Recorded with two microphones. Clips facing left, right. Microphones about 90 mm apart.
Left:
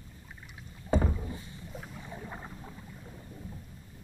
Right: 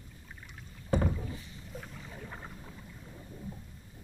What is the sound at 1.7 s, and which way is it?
Boat, 10° left (ahead or behind).